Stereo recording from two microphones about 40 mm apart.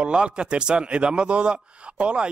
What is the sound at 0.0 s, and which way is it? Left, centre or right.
Speech, right.